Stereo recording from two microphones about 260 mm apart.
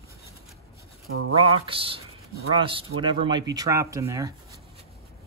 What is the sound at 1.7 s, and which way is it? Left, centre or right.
Speech, right.